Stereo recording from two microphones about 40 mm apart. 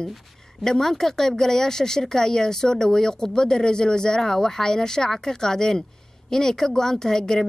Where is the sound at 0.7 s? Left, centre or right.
Centre.